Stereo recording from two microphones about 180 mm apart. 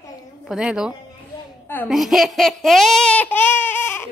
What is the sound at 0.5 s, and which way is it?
A woman's voice, 5° right (ahead or behind).